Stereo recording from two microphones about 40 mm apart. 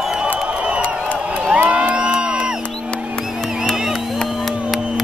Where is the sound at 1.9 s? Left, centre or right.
Right.